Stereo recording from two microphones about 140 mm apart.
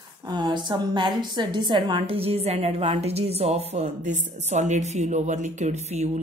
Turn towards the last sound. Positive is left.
turn(degrees=-50)  # may be behind; listen again after turning